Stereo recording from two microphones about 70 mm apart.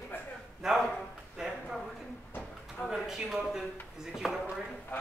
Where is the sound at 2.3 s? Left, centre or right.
Left.